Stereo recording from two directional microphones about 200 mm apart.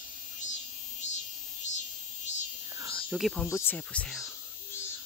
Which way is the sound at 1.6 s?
35° left (ahead or behind).